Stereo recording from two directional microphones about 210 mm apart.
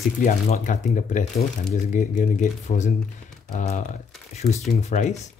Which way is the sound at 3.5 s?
35° left (ahead or behind).